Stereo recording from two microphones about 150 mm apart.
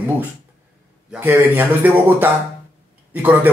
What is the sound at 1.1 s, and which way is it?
Speech, 15° right (ahead or behind).